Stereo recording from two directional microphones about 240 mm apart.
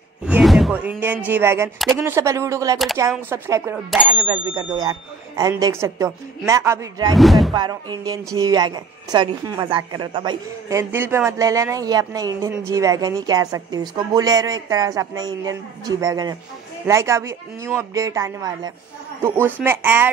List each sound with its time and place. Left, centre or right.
0.2 s a woman's voice: centre
7.2 s speech: centre
7.5 s a woman's voice: centre